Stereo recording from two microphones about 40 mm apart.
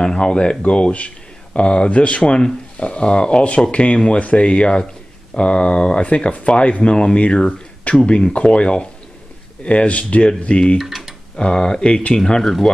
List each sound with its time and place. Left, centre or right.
0.0 s speech: centre
10.8 s tick-tock: centre
11.3 s speech: left